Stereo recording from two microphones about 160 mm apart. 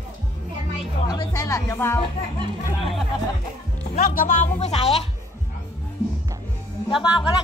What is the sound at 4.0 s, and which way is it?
Speech, 60° left (ahead or behind).